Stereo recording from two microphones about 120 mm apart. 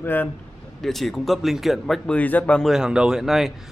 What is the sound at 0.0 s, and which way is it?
Speech, 15° left (ahead or behind).